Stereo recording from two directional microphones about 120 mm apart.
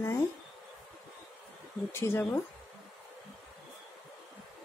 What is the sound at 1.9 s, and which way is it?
Speech, 20° left (ahead or behind).